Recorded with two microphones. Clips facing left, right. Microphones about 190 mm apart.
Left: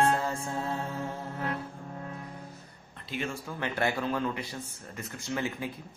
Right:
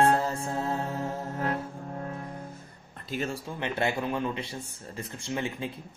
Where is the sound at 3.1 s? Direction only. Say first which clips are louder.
Right 3 dB; 40° right (ahead or behind).